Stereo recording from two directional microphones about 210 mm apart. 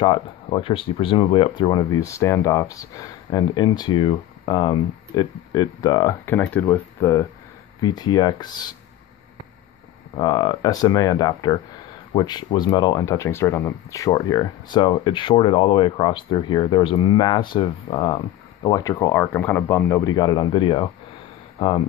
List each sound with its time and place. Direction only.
0.0 s speech: 25° left (ahead or behind)
10.1 s speech: 20° left (ahead or behind)